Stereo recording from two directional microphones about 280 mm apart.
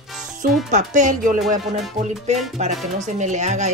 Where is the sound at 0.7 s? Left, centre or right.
Right.